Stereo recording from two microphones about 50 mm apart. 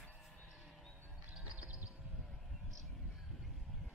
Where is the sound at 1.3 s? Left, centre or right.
Right.